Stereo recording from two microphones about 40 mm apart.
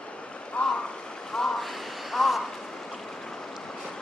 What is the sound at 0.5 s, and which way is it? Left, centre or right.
Stream, left.